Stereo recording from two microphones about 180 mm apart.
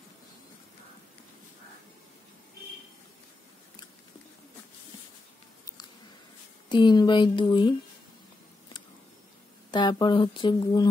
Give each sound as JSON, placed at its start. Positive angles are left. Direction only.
{"t": 6.7, "sound": "speech", "side_deg": 25}
{"t": 9.7, "sound": "speech", "side_deg": 25}